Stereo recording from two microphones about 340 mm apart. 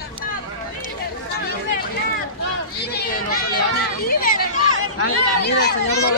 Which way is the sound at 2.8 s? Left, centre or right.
Left.